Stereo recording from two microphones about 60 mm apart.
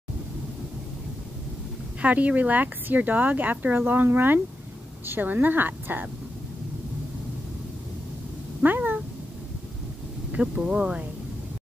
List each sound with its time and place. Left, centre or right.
2.0 s speech: right
8.6 s cat: right
10.3 s speech: centre